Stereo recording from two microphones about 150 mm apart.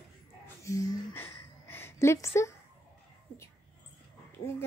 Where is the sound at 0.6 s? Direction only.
20° left (ahead or behind).